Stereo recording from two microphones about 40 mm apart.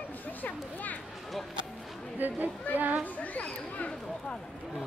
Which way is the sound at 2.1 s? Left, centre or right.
Right.